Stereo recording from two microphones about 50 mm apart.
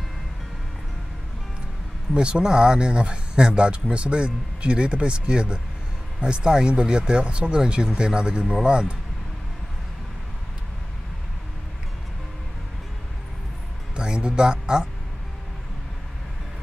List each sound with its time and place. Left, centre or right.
2.1 s speech: centre
13.9 s speech: centre